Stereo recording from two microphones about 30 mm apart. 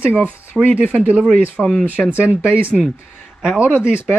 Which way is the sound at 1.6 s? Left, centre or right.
Centre.